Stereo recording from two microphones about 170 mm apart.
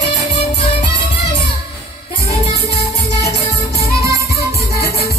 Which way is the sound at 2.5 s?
75° left (ahead or behind).